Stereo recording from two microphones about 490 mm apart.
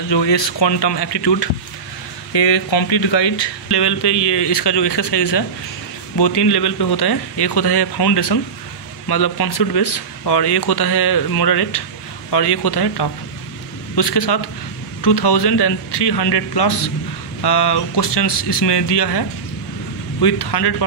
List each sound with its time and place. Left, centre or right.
0.1 s speech: left